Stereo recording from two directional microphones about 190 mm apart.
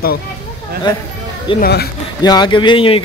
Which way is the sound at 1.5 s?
55° left (ahead or behind).